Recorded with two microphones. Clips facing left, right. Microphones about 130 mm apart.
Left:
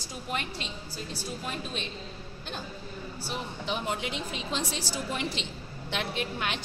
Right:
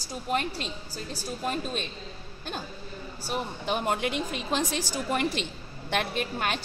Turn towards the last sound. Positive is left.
turn(degrees=-45)  # may be behind; listen again after turning